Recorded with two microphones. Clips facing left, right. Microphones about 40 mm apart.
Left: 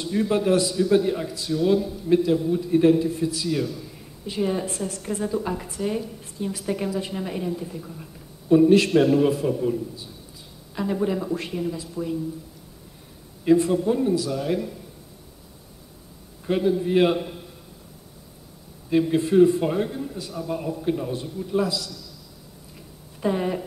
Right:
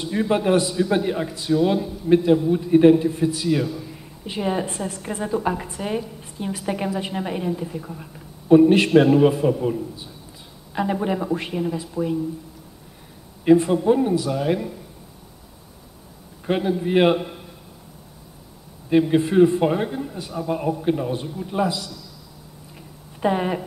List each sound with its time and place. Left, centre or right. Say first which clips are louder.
0.0 s a woman's voice: right 1 dB; centre
13.4 s a woman's voice: right 3 dB; right
16.4 s a man's voice: even; right
18.9 s a woman's voice: right 3 dB; right
23.2 s a woman's voice: right 3 dB; right